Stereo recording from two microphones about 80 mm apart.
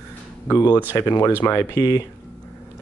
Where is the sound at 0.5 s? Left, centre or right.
Left.